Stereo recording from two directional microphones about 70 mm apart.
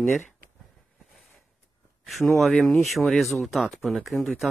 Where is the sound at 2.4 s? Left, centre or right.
Centre.